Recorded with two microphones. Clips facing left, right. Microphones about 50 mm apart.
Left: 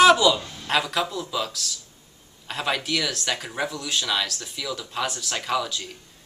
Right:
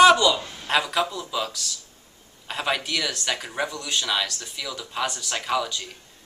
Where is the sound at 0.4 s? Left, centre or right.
Right.